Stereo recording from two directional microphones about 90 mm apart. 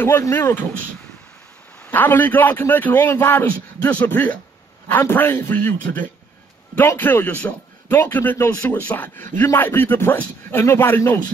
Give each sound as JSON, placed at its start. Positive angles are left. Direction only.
{"t": 0.0, "sound": "a man's voice", "side_deg": 30}
{"t": 1.9, "sound": "a man's voice", "side_deg": 20}